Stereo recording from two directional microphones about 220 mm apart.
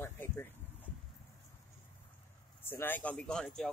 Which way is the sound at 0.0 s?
10° left (ahead or behind).